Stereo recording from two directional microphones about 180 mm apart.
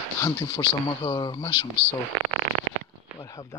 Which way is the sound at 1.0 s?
25° left (ahead or behind).